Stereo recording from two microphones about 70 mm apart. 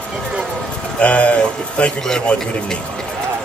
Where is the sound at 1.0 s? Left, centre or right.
Centre.